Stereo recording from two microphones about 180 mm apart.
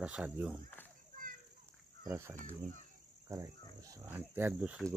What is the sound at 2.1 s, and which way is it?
Speech, 15° right (ahead or behind).